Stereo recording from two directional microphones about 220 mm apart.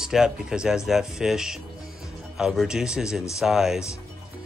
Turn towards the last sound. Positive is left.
turn(degrees=0)  # may be behind; listen again after turning